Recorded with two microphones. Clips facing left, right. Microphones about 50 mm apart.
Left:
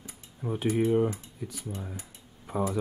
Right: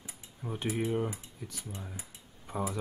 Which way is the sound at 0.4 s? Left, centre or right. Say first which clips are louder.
Left 6 dB; centre.